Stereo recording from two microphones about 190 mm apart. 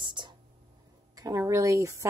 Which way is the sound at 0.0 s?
25° right (ahead or behind).